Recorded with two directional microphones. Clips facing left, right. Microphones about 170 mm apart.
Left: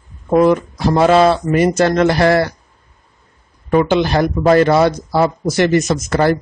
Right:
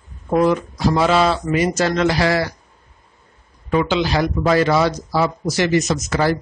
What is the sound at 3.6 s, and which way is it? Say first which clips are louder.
Speech: left 5 dB; 55° left (ahead or behind).